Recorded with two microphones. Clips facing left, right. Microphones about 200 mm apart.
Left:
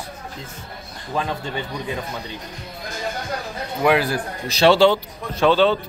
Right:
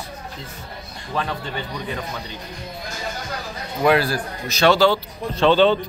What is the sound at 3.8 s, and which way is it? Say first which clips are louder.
Speech: right 1 dB; 15° left (ahead or behind).